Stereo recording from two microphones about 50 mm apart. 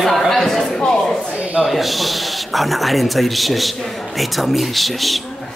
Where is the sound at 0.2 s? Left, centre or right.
Centre.